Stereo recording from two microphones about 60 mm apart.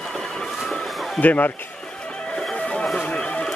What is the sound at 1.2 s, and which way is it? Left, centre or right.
Speech, left.